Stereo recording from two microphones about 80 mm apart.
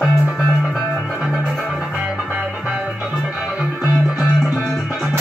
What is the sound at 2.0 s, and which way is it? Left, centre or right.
Music, centre.